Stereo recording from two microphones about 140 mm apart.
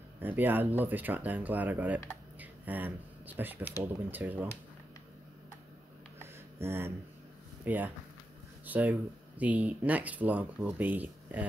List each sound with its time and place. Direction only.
0.2 s speech: 15° right (ahead or behind)
6.6 s speech: 15° right (ahead or behind)